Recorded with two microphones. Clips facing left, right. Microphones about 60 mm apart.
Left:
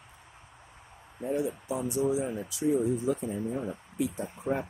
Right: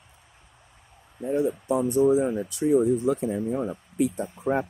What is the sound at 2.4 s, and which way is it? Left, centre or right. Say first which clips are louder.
Speech: right 6 dB; right.